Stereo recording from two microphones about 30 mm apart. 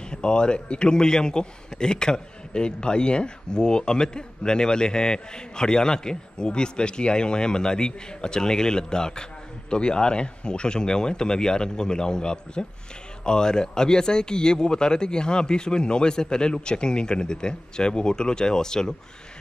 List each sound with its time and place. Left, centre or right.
0.1 s a man's voice: left